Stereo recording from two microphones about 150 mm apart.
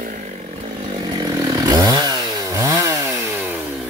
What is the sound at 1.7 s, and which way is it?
Chainsaw, 25° right (ahead or behind).